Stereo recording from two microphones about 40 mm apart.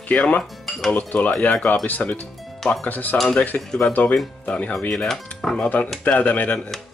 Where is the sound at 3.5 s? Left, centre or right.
Left.